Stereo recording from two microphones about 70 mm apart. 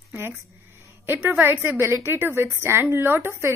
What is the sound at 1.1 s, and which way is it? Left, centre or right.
A woman's voice, right.